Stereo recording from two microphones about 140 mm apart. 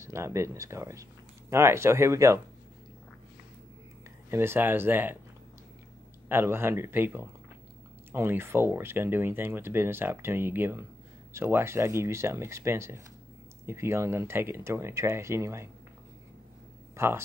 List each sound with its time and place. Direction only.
0.0 s speech: 20° right (ahead or behind)
4.3 s speech: 15° right (ahead or behind)
6.2 s speech: 15° right (ahead or behind)
16.9 s speech: 20° right (ahead or behind)